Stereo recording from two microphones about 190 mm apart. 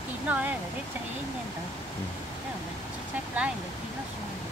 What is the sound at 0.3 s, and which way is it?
Speech, 10° right (ahead or behind).